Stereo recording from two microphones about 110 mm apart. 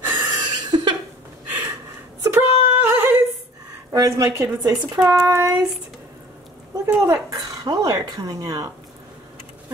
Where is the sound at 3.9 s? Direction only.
30° right (ahead or behind).